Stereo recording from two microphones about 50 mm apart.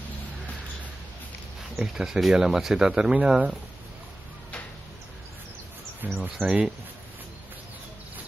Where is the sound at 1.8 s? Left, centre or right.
Centre.